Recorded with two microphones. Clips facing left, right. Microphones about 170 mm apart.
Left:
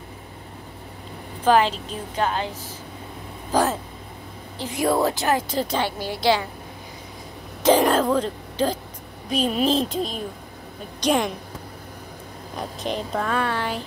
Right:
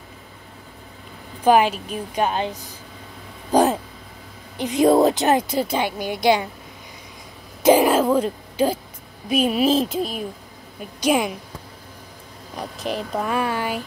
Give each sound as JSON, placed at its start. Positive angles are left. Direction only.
{"t": 1.4, "sound": "a woman's voice", "side_deg": -10}
{"t": 3.5, "sound": "a sound", "side_deg": -15}
{"t": 4.6, "sound": "a woman's voice", "side_deg": -20}
{"t": 7.6, "sound": "a sound", "side_deg": -10}
{"t": 9.3, "sound": "a woman's voice", "side_deg": -10}
{"t": 12.5, "sound": "a woman's voice", "side_deg": 0}